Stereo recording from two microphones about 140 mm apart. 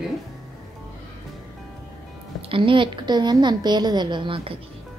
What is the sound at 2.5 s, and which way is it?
A woman's voice, 35° right (ahead or behind).